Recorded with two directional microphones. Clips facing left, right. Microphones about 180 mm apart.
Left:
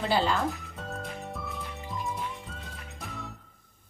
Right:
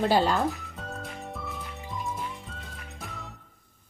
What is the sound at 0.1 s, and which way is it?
Speech, 40° right (ahead or behind).